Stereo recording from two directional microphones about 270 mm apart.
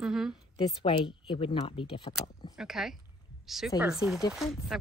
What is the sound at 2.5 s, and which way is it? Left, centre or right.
Speech, centre.